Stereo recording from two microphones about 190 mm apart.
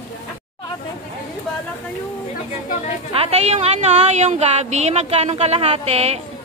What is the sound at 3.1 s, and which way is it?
Speech, 30° right (ahead or behind).